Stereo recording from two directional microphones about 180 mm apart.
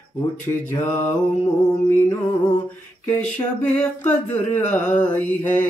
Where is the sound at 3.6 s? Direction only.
10° left (ahead or behind).